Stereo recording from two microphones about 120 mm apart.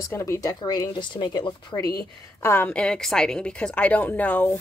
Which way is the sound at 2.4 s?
15° left (ahead or behind).